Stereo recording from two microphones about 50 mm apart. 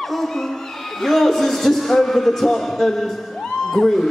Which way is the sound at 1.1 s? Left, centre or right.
Centre.